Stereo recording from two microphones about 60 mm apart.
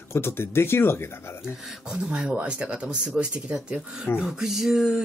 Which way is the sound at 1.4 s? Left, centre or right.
Centre.